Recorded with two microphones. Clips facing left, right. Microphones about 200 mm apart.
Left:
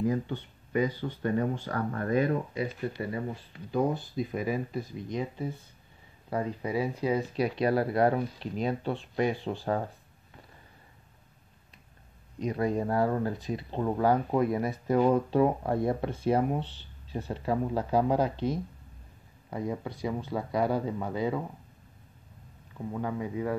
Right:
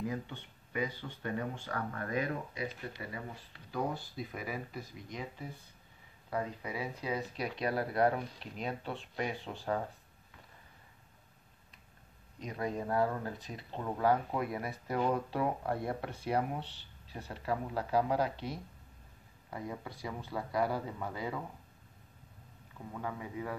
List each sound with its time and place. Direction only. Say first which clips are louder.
0.0 s speech: left 9 dB; 40° left (ahead or behind)
3.5 s speech: left 8 dB; 20° left (ahead or behind)
12.4 s speech: left 8 dB; 35° left (ahead or behind)
19.5 s speech: left 8 dB; 25° left (ahead or behind)
23.0 s speech: left 7 dB; 25° left (ahead or behind)